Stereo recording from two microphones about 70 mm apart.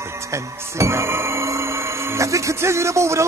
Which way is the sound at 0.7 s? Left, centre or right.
Right.